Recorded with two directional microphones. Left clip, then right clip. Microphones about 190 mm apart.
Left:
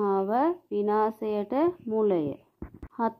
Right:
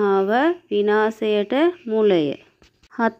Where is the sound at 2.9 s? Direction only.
25° right (ahead or behind).